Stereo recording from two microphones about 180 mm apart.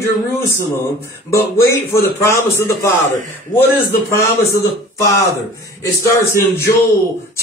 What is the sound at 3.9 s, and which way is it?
A man's voice, 15° left (ahead or behind).